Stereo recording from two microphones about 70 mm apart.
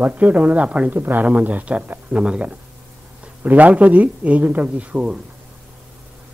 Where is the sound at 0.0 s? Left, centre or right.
Right.